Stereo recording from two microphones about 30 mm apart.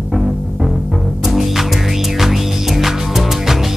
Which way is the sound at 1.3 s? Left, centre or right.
Centre.